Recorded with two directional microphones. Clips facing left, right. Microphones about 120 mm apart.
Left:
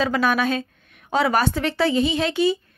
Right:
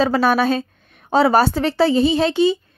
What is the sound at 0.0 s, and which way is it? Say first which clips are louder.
A woman's voice: right 4 dB; 35° right (ahead or behind).